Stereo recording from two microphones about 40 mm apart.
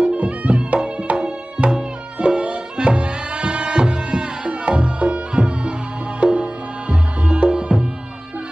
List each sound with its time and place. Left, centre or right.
0.0 s music: right